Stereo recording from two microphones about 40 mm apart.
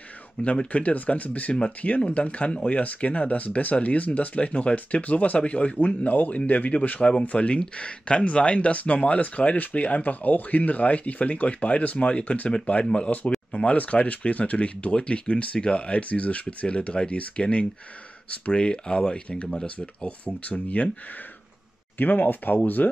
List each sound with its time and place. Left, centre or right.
0.4 s speech: left
7.0 s speech: left
9.6 s speech: left
12.7 s speech: left
13.5 s speech: left
21.9 s speech: left